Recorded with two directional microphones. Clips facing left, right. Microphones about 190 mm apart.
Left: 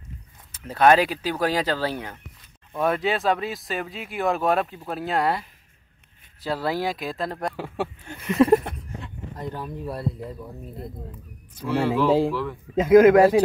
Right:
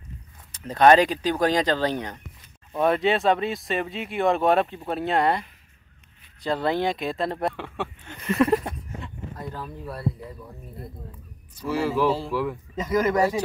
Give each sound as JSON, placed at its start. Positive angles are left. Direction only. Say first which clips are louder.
{"t": 0.5, "sound": "speech", "louder": "right 1 dB", "side_deg": 10}
{"t": 9.4, "sound": "speech", "louder": "left 4 dB", "side_deg": 20}
{"t": 11.6, "sound": "speech", "louder": "left 1 dB", "side_deg": -5}
{"t": 12.8, "sound": "speech", "louder": "left 9 dB", "side_deg": 60}